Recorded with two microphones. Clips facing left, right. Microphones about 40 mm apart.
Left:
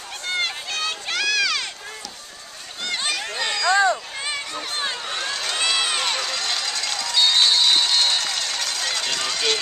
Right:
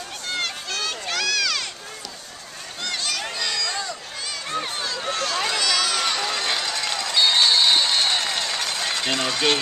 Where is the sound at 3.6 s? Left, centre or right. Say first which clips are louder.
Left 11 dB; left.